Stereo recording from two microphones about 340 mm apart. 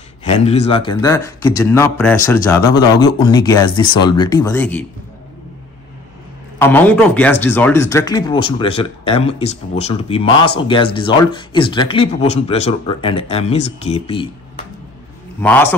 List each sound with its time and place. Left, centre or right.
0.2 s speech: centre
6.6 s a man's voice: centre